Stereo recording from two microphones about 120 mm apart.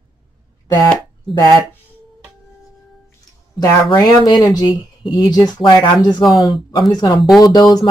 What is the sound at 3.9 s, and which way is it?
Speech, 35° left (ahead or behind).